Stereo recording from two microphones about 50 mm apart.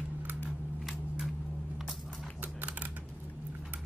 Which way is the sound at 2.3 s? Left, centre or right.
Right.